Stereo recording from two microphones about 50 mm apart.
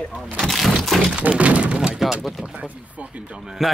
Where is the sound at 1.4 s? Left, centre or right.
Right.